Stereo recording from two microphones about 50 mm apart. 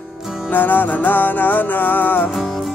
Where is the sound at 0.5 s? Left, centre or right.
Left.